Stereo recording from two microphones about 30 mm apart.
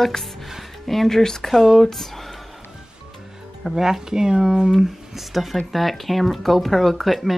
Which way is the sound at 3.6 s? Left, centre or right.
Centre.